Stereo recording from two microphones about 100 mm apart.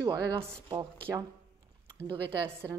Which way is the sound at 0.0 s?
40° right (ahead or behind).